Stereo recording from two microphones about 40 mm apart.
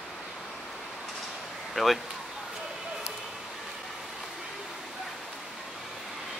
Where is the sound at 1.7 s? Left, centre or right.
Centre.